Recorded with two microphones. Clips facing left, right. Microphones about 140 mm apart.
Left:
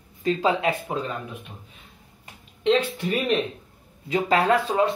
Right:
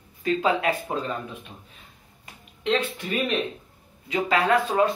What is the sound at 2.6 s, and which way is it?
Speech, 35° left (ahead or behind).